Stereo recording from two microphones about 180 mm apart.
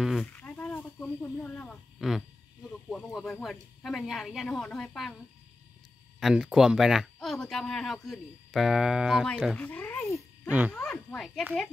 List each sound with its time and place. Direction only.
0.0 s speech: centre (ahead or behind)
0.3 s snake: 10° left (ahead or behind)
3.4 s speech: centre (ahead or behind)
6.1 s speech: centre (ahead or behind)
10.7 s a sound: 5° left (ahead or behind)